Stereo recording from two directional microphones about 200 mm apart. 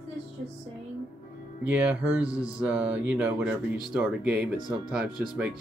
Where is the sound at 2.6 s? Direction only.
5° right (ahead or behind).